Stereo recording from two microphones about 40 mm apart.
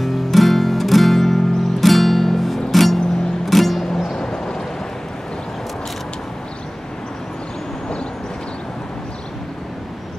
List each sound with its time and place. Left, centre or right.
0.0 s music: centre
4.1 s vehicle: centre